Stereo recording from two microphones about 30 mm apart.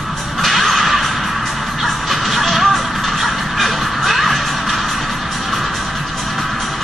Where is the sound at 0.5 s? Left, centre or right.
Centre.